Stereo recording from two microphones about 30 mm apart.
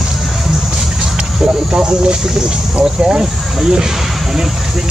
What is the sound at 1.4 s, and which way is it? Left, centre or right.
Speech, right.